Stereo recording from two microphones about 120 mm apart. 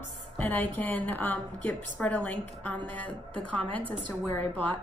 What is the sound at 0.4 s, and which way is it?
A woman's voice, 15° left (ahead or behind).